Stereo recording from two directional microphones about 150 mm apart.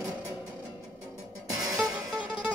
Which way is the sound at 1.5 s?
20° right (ahead or behind).